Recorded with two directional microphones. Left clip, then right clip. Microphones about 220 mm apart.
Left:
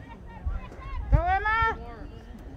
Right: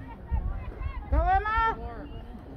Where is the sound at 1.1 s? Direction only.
25° left (ahead or behind).